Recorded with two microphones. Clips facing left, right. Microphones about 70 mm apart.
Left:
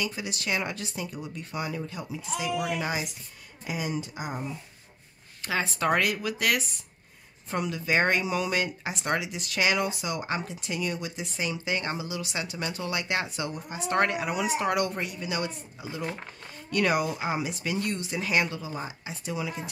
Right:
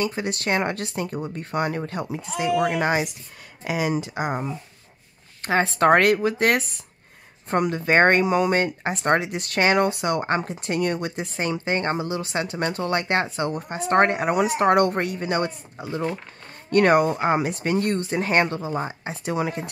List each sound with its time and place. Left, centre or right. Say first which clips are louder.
0.0 s speech: right 7 dB; right
3.6 s speech: right 8 dB; right
5.4 s speech: right 8 dB; right